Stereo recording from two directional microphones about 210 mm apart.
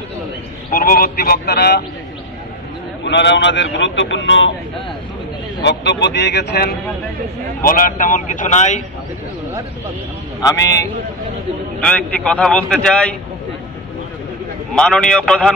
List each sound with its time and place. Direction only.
0.7 s a man's voice: 45° left (ahead or behind)
3.0 s a man's voice: 55° left (ahead or behind)
5.6 s a man's voice: 55° left (ahead or behind); by 8.8 s 35° left (ahead or behind)
10.4 s a man's voice: 15° left (ahead or behind)
14.8 s a man's voice: 5° left (ahead or behind)